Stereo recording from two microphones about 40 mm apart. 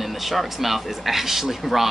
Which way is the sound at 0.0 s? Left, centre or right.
Centre.